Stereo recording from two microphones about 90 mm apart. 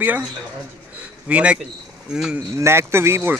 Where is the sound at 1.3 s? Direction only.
15° right (ahead or behind).